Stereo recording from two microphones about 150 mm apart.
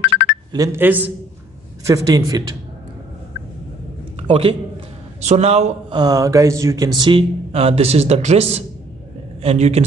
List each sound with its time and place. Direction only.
0.5 s a woman's voice: 20° right (ahead or behind)
1.9 s speech: 25° right (ahead or behind)
4.2 s a man's voice: 40° right (ahead or behind)
5.9 s speech: 25° right (ahead or behind)
7.0 s speech: 35° right (ahead or behind)